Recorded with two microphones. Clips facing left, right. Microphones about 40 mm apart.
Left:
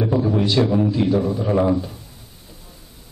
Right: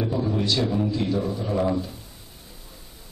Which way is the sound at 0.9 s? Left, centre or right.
Centre.